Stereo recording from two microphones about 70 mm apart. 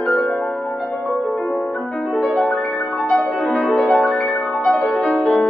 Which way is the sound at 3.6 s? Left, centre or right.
Centre.